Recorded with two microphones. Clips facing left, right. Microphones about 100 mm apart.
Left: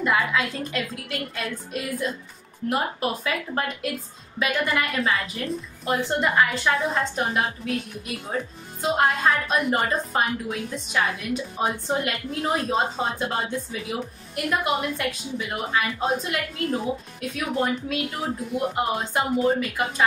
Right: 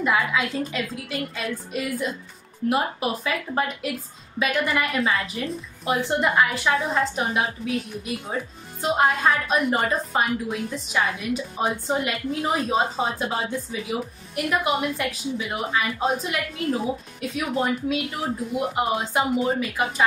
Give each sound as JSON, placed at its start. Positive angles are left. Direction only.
{"t": 0.0, "sound": "a woman's voice", "side_deg": -5}